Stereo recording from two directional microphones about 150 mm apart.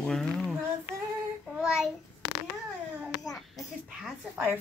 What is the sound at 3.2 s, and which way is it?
Speech, centre (ahead or behind).